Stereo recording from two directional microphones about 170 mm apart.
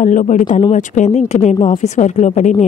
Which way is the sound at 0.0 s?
50° left (ahead or behind).